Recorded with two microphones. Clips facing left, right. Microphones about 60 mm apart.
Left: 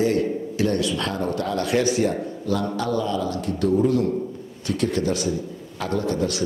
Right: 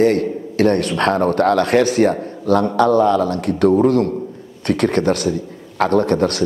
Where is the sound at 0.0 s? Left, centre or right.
Right.